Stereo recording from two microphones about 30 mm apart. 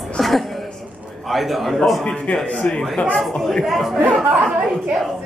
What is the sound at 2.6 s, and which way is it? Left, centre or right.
Speech, left.